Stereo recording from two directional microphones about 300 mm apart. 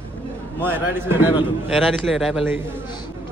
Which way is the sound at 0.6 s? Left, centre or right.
Centre.